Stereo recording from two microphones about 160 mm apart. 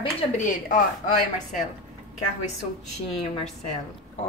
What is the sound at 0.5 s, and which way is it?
A woman's voice, 55° left (ahead or behind).